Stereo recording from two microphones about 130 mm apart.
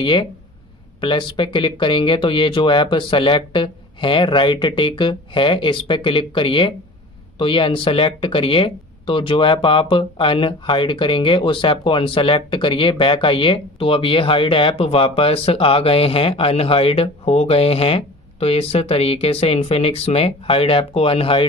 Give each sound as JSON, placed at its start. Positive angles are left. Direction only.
{"t": 0.0, "sound": "speech", "side_deg": 40}